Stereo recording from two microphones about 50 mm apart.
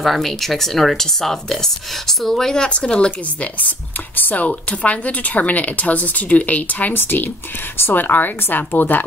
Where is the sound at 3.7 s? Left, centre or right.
Left.